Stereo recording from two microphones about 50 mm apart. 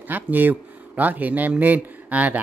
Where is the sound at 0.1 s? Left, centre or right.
Right.